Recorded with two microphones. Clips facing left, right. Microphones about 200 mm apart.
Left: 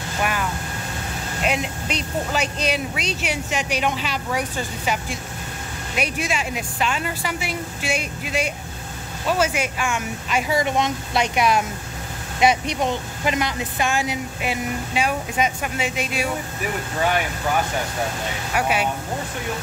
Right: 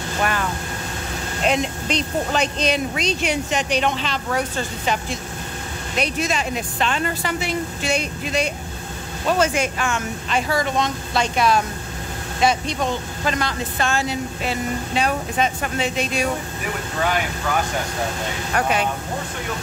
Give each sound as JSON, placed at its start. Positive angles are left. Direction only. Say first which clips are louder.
{"t": 0.2, "sound": "vehicle", "louder": "right 1 dB", "side_deg": 10}
{"t": 1.4, "sound": "speech", "louder": "right 3 dB", "side_deg": 5}
{"t": 5.9, "sound": "speech", "louder": "right 2 dB", "side_deg": 10}
{"t": 18.5, "sound": "speech", "louder": "right 1 dB", "side_deg": 10}